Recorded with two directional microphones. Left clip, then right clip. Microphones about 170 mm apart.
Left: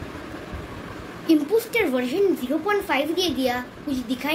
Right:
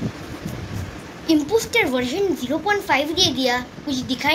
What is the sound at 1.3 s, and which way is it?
A child's voice, 20° right (ahead or behind).